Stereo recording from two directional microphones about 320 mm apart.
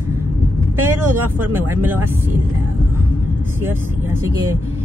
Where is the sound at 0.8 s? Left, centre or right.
Centre.